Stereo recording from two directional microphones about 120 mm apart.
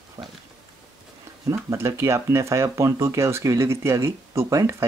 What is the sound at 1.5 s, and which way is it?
Speech, 25° right (ahead or behind).